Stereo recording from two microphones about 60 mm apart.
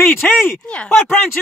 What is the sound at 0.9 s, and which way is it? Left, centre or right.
Speech, left.